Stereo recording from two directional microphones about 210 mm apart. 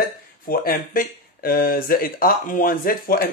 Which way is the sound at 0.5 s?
45° left (ahead or behind).